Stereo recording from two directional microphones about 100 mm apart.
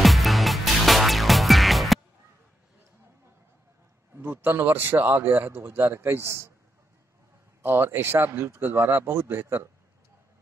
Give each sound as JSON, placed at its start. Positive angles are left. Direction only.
{"t": 0.0, "sound": "music", "side_deg": 0}
{"t": 4.2, "sound": "a man's voice", "side_deg": -20}
{"t": 7.6, "sound": "a man's voice", "side_deg": -20}